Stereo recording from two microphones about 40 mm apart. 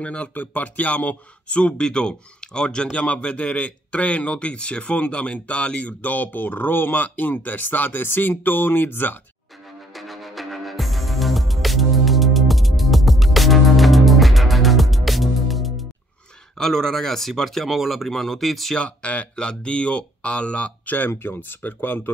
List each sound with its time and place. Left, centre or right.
0.0 s speech: left
0.3 s speech: left
9.9 s music: centre
16.5 s speech: centre
17.6 s speech: centre
18.8 s speech: left
21.3 s speech: left